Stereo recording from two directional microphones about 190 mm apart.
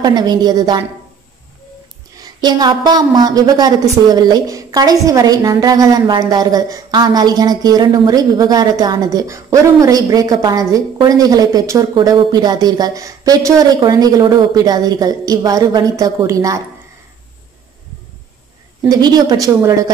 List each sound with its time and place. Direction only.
0.0 s a woman's voice: 20° right (ahead or behind)
2.2 s a woman's voice: 20° right (ahead or behind)
18.9 s a woman's voice: 20° right (ahead or behind)